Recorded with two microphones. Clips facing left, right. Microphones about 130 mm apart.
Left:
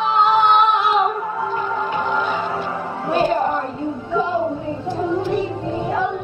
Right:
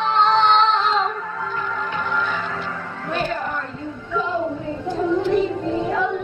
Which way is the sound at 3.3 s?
30° left (ahead or behind).